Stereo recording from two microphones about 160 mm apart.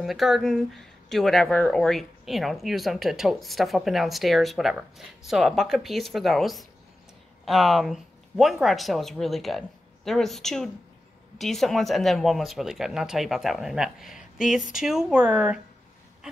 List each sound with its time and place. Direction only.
0.0 s speech: centre (ahead or behind)